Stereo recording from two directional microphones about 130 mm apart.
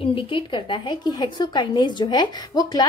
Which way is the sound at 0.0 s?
40° left (ahead or behind).